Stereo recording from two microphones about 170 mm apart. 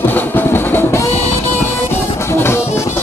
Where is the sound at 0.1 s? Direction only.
10° left (ahead or behind).